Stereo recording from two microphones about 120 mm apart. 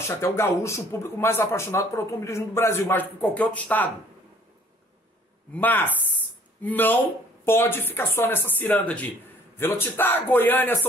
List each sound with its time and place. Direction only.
0.0 s speech: 20° left (ahead or behind)
5.5 s speech: 15° left (ahead or behind)